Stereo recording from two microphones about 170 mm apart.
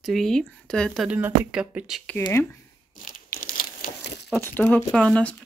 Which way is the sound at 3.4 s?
55° left (ahead or behind).